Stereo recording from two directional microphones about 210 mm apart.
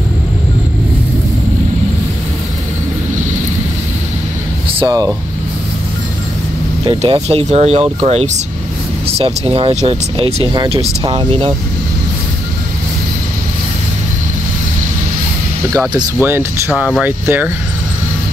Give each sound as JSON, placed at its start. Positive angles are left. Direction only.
{"t": 4.6, "sound": "speech", "side_deg": -20}
{"t": 7.0, "sound": "speech", "side_deg": -30}
{"t": 16.2, "sound": "speech", "side_deg": -10}